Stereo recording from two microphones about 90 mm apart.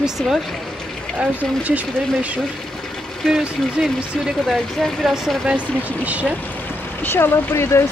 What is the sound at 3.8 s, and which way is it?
Speech, 10° right (ahead or behind).